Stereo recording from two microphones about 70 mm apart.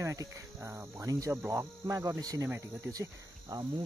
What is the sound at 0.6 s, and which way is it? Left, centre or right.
Cricket, right.